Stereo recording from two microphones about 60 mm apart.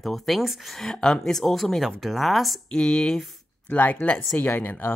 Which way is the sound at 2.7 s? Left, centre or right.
Centre.